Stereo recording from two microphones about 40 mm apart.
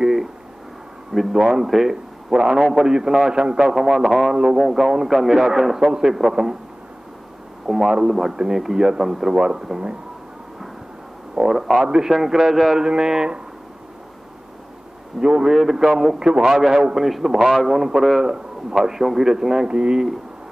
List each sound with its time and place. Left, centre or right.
0.0 s a sound: centre
1.3 s speech: centre
3.7 s speech: centre
4.6 s speech: centre
7.6 s speech: centre
11.3 s speech: centre
15.1 s speech: centre
16.2 s a man's voice: centre
16.4 s speech: centre
17.7 s a man's voice: centre
18.8 s speech: centre
19.7 s a man's voice: right